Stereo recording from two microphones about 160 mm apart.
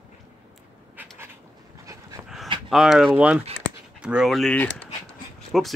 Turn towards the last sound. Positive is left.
turn(degrees=0)  # may be behind; listen again after turning